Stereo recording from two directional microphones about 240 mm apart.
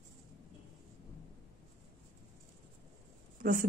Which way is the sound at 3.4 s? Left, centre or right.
Right.